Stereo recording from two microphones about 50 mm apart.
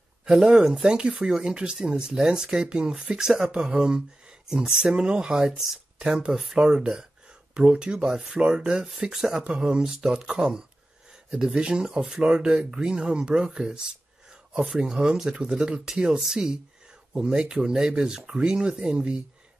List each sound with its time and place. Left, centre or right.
0.2 s speech: centre